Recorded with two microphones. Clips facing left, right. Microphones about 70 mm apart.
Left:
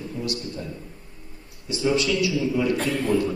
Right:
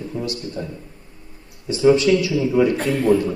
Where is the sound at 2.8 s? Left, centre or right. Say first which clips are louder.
Right 4 dB; centre.